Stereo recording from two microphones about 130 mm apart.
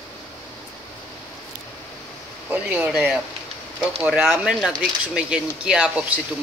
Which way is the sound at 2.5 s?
10° right (ahead or behind).